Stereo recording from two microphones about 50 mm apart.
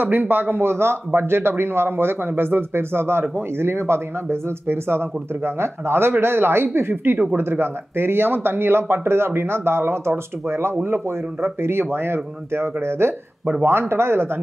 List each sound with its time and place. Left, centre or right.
0.0 s speech: right